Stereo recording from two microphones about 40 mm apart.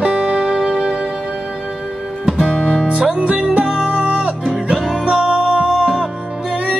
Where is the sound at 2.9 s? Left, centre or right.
Right.